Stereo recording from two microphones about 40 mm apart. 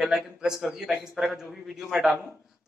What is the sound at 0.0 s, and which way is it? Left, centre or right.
A man's voice, centre.